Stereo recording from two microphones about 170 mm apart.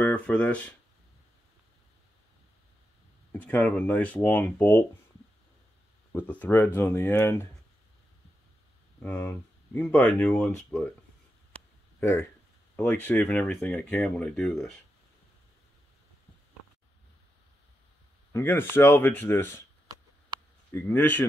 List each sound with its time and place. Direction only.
0.0 s speech: 10° left (ahead or behind)
3.3 s speech: 10° left (ahead or behind)
6.1 s speech: 10° left (ahead or behind)
9.0 s speech: 10° left (ahead or behind)
12.0 s speech: 15° left (ahead or behind)
18.3 s speech: 10° left (ahead or behind)
20.7 s speech: 10° left (ahead or behind)